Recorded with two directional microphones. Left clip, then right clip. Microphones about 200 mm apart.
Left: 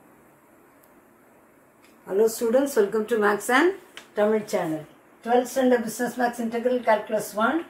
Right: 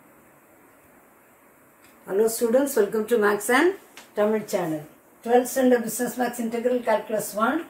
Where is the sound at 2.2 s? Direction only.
15° right (ahead or behind).